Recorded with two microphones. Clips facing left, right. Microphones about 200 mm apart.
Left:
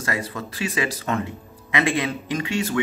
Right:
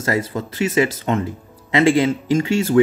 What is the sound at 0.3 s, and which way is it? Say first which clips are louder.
Speech: right 7 dB; 25° right (ahead or behind).